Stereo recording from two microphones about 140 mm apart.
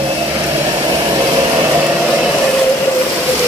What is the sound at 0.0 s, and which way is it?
Vehicle, 25° right (ahead or behind).